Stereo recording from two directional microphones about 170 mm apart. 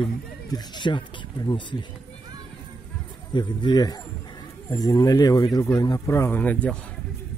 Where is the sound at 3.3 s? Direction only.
25° left (ahead or behind); by 6.7 s 10° left (ahead or behind).